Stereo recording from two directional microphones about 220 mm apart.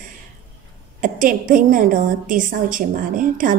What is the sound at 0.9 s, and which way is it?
A woman's voice, 35° right (ahead or behind).